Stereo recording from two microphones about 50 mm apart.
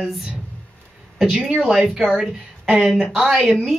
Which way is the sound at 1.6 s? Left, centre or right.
Centre.